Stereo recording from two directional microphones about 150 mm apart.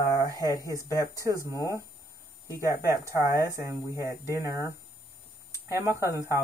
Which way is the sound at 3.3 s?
20° right (ahead or behind).